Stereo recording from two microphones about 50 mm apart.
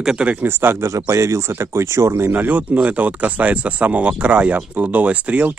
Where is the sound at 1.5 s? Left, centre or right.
Right.